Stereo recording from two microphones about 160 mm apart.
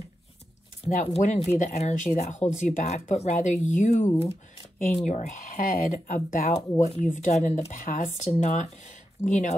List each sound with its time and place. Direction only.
0.8 s speech: 40° left (ahead or behind)